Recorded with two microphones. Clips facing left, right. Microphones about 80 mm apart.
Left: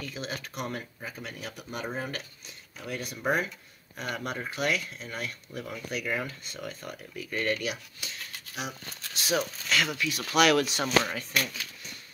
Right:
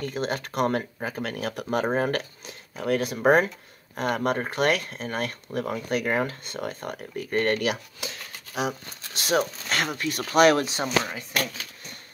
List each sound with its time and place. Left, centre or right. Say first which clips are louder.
0.0 s speech: right 8 dB; right
3.2 s speech: right 8 dB; right
9.4 s speech: right 2 dB; right